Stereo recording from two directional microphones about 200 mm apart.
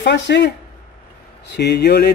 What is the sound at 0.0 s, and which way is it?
Speech, 60° left (ahead or behind).